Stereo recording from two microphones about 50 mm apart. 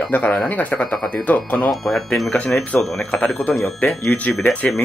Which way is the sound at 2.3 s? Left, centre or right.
Left.